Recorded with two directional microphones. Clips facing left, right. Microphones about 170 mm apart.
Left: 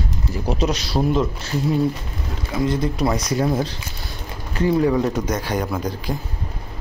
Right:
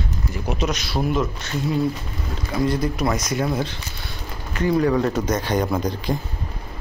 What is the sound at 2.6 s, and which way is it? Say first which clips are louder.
Speech: left 1 dB; 25° left (ahead or behind).